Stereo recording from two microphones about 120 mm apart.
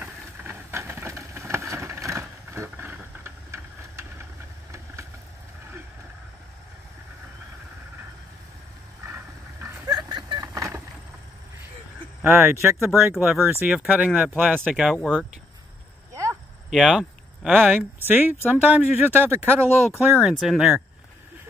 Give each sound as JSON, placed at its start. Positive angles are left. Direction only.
{"t": 0.0, "sound": "vehicle", "side_deg": -15}
{"t": 9.0, "sound": "a sound", "side_deg": -20}
{"t": 9.9, "sound": "vehicle", "side_deg": -35}
{"t": 12.2, "sound": "speech", "side_deg": -20}
{"t": 12.9, "sound": "speech", "side_deg": -5}
{"t": 16.7, "sound": "speech", "side_deg": -5}
{"t": 20.0, "sound": "speech", "side_deg": -5}